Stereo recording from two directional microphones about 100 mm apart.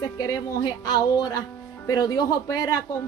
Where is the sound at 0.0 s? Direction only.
40° left (ahead or behind).